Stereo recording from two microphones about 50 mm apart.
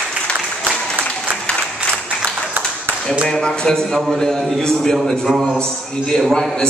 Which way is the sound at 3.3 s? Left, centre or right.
Centre.